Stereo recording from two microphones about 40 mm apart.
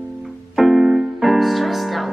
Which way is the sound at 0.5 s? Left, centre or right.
Centre.